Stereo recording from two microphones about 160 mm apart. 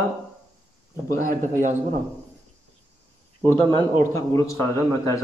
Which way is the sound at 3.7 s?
20° left (ahead or behind).